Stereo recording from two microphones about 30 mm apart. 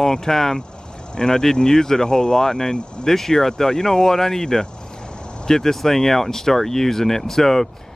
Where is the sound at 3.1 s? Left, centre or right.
Centre.